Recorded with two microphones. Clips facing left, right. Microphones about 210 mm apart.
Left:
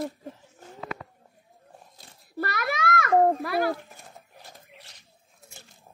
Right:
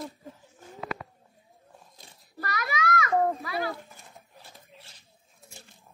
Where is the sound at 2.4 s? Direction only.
65° left (ahead or behind).